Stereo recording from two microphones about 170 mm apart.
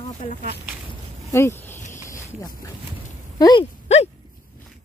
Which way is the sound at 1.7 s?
45° left (ahead or behind).